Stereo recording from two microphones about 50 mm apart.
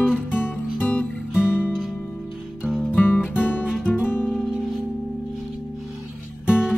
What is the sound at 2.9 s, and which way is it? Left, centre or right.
Music, left.